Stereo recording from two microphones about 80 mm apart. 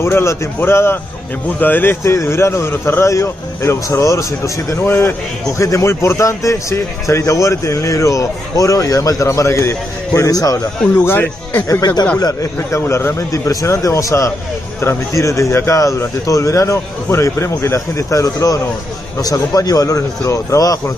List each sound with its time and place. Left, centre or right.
0.0 s a man's voice: left
4.8 s a man's voice: left
11.1 s speech: left
11.8 s speech: left
12.7 s a man's voice: left